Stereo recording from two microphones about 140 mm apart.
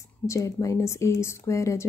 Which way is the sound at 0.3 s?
20° left (ahead or behind).